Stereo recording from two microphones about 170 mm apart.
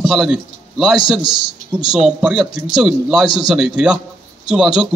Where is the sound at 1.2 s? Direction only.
30° left (ahead or behind).